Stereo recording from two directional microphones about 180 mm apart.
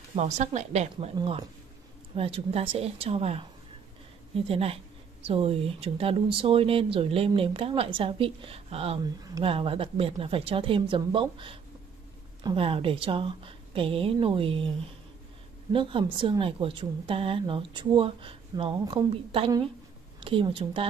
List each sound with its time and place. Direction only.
0.1 s speech: 35° right (ahead or behind)
4.5 s a woman's voice: 35° right (ahead or behind)
15.7 s a woman's voice: 30° right (ahead or behind)